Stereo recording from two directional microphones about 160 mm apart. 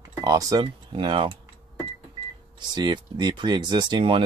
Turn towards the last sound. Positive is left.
turn(degrees=-30)  # may be behind; listen again after turning